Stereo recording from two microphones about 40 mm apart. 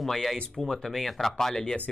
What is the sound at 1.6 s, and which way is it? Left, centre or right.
Speech, left.